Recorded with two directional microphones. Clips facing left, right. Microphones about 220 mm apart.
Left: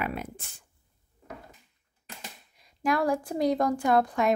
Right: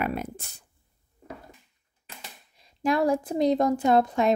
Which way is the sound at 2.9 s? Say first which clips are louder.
Right 3 dB; 25° right (ahead or behind).